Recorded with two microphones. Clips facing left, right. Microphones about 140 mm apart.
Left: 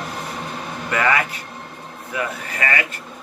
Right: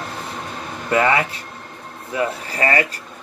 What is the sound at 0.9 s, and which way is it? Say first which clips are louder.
Speech: right 3 dB; 30° right (ahead or behind).